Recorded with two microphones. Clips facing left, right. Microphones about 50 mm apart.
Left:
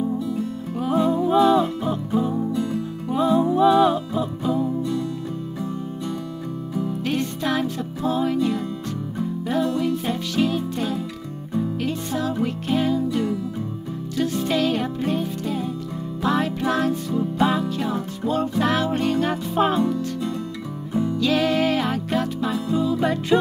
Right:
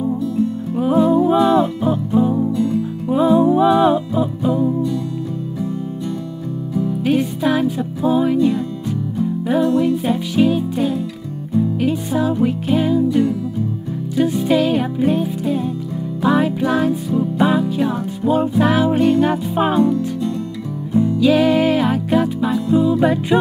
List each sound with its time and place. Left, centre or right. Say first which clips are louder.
0.7 s music: right 6 dB; centre
2.5 s music: right 6 dB; centre
3.1 s music: right 6 dB; centre
7.0 s music: right 9 dB; centre
21.2 s music: right 6 dB; centre